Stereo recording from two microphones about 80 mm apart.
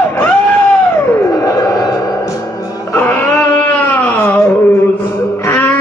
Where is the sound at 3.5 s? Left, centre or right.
Left.